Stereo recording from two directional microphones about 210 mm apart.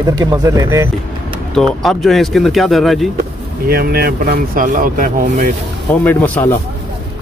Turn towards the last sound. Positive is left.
turn(degrees=5)  # may be behind; listen again after turning